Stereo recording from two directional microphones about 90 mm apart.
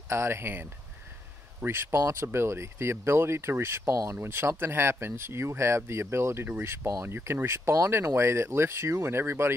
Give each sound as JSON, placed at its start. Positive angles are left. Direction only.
{"t": 0.1, "sound": "speech", "side_deg": -30}
{"t": 6.9, "sound": "speech", "side_deg": -35}
{"t": 7.2, "sound": "speech", "side_deg": -25}